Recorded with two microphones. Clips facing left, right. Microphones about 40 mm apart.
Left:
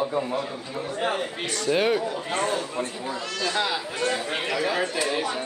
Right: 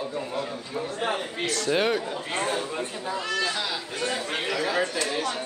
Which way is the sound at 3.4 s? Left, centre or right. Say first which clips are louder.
Left 3 dB; centre.